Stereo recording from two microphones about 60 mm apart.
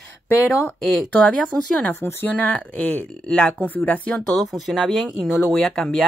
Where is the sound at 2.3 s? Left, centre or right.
Left.